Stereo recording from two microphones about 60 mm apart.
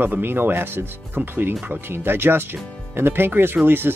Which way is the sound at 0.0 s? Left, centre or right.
Right.